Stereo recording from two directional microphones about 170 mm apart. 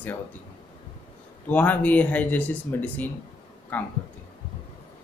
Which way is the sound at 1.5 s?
10° left (ahead or behind).